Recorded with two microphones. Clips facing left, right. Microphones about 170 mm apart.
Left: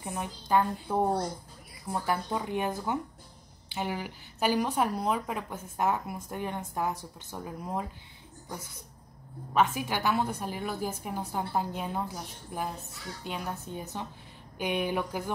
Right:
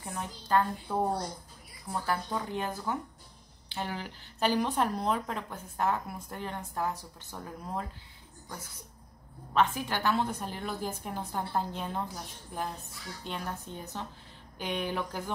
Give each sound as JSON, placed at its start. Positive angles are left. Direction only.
{"t": 0.0, "sound": "speech", "side_deg": 15}
{"t": 9.5, "sound": "speech", "side_deg": 10}